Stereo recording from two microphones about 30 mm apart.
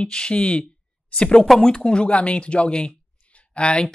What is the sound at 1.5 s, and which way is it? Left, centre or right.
Speech, left.